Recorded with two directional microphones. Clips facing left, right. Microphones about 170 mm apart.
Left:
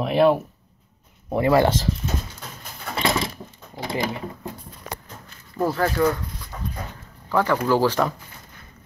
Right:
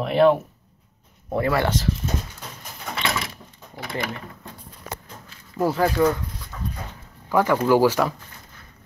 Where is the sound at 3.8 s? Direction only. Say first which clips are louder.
Left 3 dB; 30° left (ahead or behind).